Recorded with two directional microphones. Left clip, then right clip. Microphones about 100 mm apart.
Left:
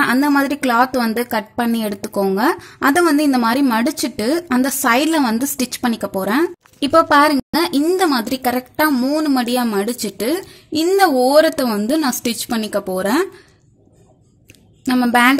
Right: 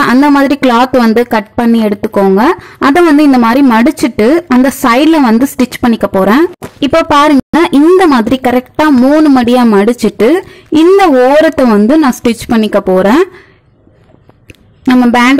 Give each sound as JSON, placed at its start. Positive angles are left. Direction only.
{"t": 0.0, "sound": "a woman's voice", "side_deg": -30}
{"t": 5.4, "sound": "a woman's voice", "side_deg": -35}
{"t": 14.9, "sound": "a woman's voice", "side_deg": -25}